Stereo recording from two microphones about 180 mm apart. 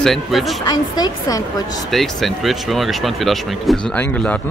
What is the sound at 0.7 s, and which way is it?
Speech, 20° left (ahead or behind).